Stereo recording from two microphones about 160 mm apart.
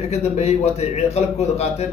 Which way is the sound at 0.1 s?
40° left (ahead or behind).